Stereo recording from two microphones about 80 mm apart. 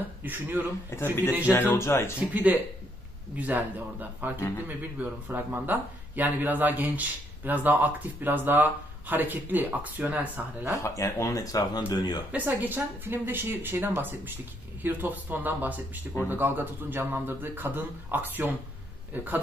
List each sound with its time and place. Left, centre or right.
0.2 s speech: right
0.8 s speech: left
2.1 s speech: right
10.8 s speech: left
11.9 s speech: left
12.3 s speech: right